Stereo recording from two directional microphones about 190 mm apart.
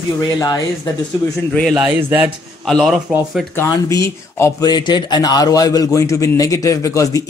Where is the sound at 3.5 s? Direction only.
15° left (ahead or behind).